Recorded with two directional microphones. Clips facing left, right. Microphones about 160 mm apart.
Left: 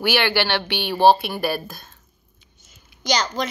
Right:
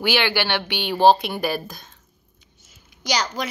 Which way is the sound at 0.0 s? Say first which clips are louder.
Left 1 dB; 15° right (ahead or behind).